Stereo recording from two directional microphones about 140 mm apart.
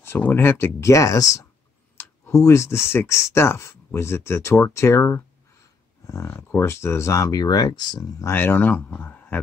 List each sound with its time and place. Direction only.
0.0 s speech: 15° left (ahead or behind)
2.4 s speech: 20° left (ahead or behind)
8.3 s speech: 15° left (ahead or behind)